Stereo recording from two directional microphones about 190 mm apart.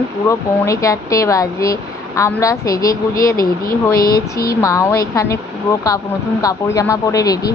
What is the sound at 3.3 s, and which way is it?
Speech, 50° left (ahead or behind).